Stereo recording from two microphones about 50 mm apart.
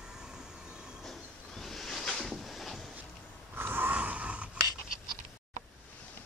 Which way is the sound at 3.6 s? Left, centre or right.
Right.